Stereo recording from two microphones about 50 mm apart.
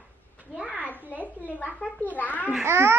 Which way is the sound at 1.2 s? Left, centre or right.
Left.